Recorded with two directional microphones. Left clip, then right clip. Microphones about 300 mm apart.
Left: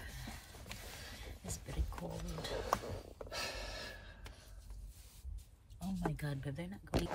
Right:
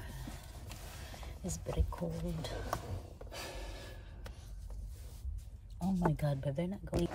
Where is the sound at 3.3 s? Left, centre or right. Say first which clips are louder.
Left 3 dB; left.